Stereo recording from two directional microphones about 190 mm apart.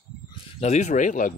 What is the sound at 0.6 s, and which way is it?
Speech, 35° left (ahead or behind).